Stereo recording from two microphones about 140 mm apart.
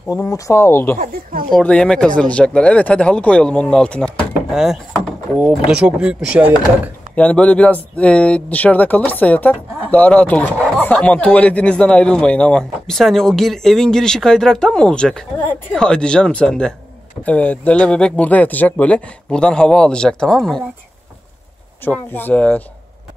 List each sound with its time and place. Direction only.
0.1 s speech: 25° left (ahead or behind)
1.6 s speech: 5° left (ahead or behind)
4.5 s a sound: centre (ahead or behind)
5.7 s speech: 5° right (ahead or behind)
7.2 s speech: 10° left (ahead or behind)
21.8 s speech: 15° left (ahead or behind)